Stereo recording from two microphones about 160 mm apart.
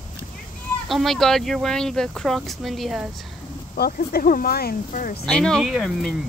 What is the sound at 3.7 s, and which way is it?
Speech, 70° left (ahead or behind).